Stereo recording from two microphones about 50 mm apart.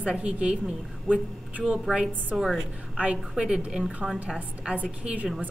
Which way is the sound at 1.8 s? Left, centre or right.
Centre.